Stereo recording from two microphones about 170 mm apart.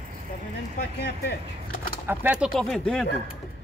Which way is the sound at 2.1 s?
10° right (ahead or behind).